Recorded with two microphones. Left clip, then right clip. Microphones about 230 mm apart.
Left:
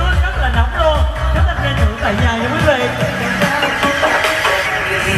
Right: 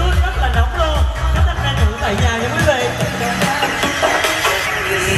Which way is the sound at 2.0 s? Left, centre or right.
Right.